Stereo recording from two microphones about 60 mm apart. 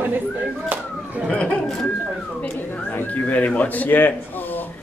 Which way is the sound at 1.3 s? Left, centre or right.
Left.